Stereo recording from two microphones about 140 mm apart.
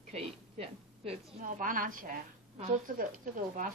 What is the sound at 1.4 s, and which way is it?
Speech, 75° right (ahead or behind).